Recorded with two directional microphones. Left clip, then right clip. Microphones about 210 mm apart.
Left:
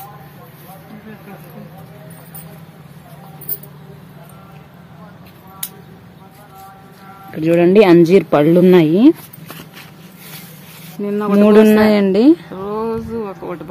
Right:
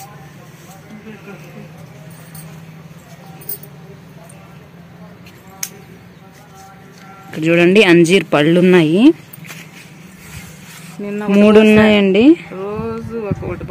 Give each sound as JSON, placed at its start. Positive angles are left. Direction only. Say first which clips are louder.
{"t": 7.3, "sound": "speech", "louder": "even", "side_deg": 0}
{"t": 11.0, "sound": "speech", "louder": "left 4 dB", "side_deg": 55}
{"t": 11.4, "sound": "speech", "louder": "right 1 dB", "side_deg": 0}
{"t": 12.5, "sound": "a sound", "louder": "left 2 dB", "side_deg": 45}